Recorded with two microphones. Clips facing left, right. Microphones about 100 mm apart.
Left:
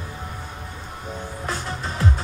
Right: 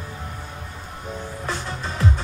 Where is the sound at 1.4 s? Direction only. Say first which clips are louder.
Left 1 dB; 35° left (ahead or behind).